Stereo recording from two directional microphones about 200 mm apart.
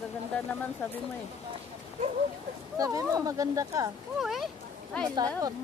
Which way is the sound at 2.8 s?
15° right (ahead or behind).